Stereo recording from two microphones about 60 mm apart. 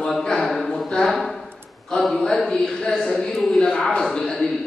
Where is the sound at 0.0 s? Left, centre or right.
Centre.